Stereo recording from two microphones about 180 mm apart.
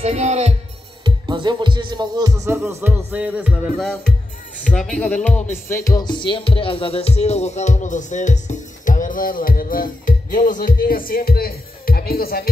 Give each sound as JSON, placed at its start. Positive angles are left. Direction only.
{"t": 0.0, "sound": "music", "side_deg": -40}
{"t": 1.0, "sound": "speech", "side_deg": -25}
{"t": 4.6, "sound": "speech", "side_deg": 5}